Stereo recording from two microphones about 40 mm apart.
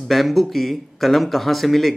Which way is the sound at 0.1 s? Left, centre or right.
Centre.